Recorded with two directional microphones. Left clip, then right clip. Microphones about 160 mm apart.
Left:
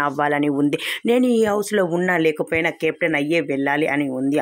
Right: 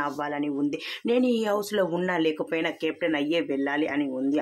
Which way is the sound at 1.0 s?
35° left (ahead or behind).